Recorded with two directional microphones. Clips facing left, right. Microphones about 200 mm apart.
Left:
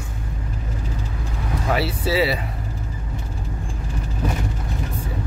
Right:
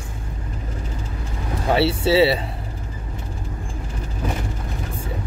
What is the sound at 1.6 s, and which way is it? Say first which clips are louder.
Speech: right 5 dB; 30° right (ahead or behind).